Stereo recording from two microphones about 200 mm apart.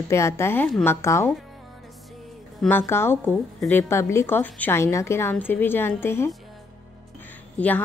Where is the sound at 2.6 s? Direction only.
10° left (ahead or behind).